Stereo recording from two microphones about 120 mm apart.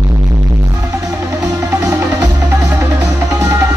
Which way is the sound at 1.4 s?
25° right (ahead or behind).